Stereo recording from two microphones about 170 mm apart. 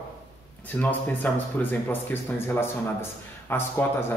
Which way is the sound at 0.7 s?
10° left (ahead or behind).